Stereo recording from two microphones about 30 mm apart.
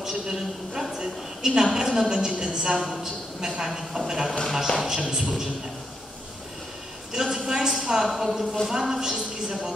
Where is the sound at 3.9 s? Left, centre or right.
Centre.